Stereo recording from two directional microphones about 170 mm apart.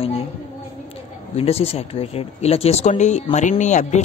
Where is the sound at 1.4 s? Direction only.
35° left (ahead or behind).